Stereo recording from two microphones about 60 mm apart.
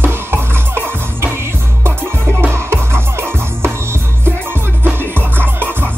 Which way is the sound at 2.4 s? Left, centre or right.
Right.